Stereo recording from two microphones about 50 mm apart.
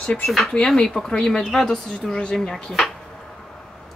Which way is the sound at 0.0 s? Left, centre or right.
Left.